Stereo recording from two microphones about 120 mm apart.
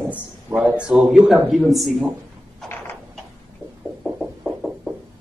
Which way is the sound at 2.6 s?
20° left (ahead or behind).